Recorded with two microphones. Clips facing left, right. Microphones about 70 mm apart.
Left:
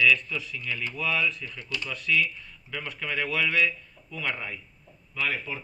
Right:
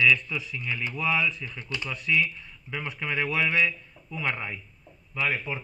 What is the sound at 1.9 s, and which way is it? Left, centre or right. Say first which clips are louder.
Speech: even; right.